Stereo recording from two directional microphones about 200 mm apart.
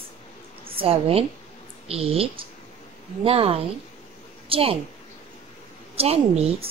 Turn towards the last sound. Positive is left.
turn(degrees=-30)  # may be behind; listen again after turning